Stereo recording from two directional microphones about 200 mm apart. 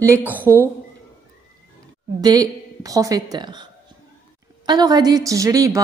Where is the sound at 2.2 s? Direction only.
20° right (ahead or behind).